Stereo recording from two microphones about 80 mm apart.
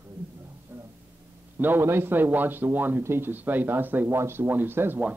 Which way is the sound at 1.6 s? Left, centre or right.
Right.